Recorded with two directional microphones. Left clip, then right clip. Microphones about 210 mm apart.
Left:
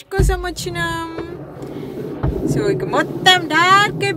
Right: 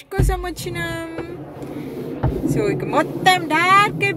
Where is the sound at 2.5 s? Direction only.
20° right (ahead or behind).